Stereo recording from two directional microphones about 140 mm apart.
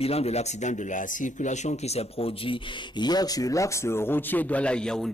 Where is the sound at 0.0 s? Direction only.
45° left (ahead or behind).